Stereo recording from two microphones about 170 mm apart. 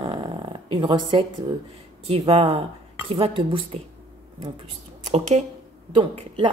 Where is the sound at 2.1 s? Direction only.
35° right (ahead or behind).